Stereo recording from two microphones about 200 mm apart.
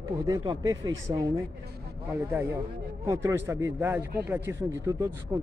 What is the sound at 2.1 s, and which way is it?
Speech, 10° right (ahead or behind).